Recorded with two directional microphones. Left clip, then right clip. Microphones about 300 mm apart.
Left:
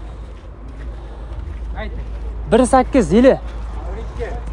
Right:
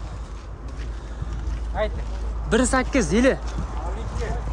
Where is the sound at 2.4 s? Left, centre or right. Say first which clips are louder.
Left 8 dB; centre.